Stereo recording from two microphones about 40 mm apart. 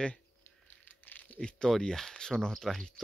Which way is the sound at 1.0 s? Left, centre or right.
Left.